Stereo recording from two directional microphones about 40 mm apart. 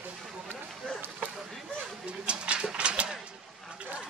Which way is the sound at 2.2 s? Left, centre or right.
Right.